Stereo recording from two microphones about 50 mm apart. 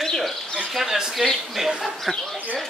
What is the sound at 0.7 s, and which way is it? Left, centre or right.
Speech, centre.